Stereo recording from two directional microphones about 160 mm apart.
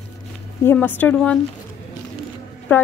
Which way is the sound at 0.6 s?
10° left (ahead or behind).